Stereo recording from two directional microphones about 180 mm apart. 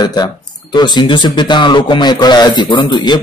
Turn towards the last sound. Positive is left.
turn(degrees=25)  # may be behind; listen again after turning